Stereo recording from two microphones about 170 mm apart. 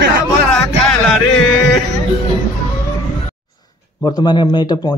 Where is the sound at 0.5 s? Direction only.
5° left (ahead or behind).